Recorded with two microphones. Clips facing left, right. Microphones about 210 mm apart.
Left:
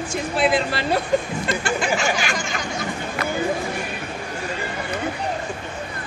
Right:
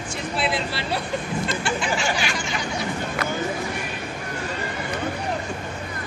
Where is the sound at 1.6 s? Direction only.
45° left (ahead or behind).